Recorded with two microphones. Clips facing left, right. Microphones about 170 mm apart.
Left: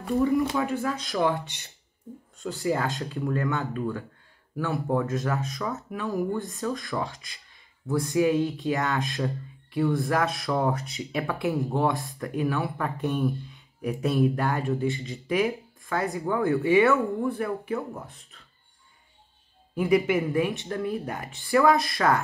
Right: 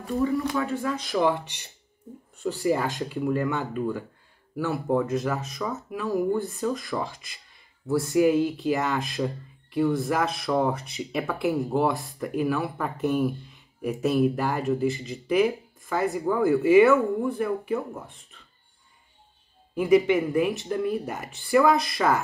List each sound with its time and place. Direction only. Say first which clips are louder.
0.3 s speech: left 2 dB; 15° left (ahead or behind)
0.8 s speech: right 2 dB; centre (ahead or behind)
19.7 s speech: right 3 dB; centre (ahead or behind)